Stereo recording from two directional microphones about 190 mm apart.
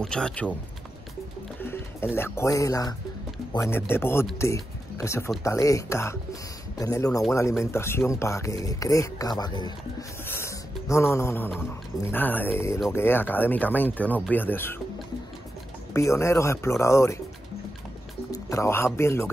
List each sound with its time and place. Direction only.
0.0 s speech: 5° left (ahead or behind)
1.6 s music: 10° left (ahead or behind)
2.1 s speech: 15° left (ahead or behind)
15.9 s speech: 15° left (ahead or behind)
18.3 s speech: 15° left (ahead or behind)